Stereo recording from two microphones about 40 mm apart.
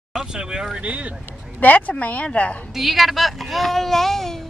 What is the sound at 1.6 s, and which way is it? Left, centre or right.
Speech, left.